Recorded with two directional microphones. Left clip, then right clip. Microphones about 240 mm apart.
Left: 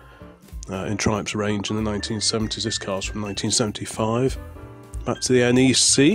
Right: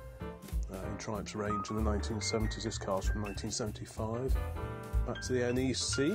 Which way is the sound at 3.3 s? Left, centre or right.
Left.